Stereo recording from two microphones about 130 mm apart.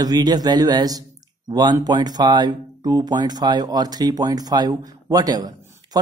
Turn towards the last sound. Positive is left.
turn(degrees=-30)  # may be behind; listen again after turning